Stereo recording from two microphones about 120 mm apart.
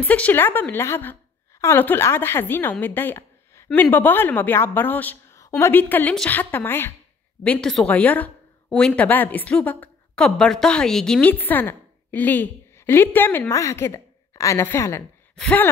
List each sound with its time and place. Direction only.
0.0 s a woman's voice: 10° left (ahead or behind)
7.4 s a woman's voice: 5° left (ahead or behind)